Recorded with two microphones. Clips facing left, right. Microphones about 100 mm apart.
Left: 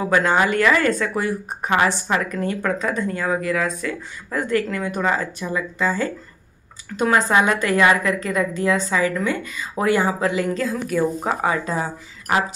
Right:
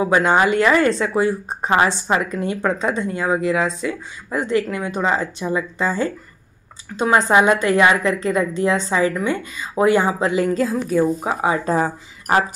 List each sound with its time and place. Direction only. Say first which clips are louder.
0.0 s speech: right 2 dB; 20° right (ahead or behind)
11.6 s speech: right 5 dB; 45° right (ahead or behind)